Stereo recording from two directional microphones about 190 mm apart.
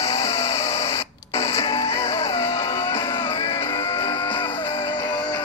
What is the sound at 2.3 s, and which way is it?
Music, 15° left (ahead or behind).